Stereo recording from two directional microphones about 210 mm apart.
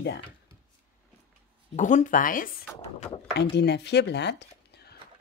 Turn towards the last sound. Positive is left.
turn(degrees=55)  # may be behind; listen again after turning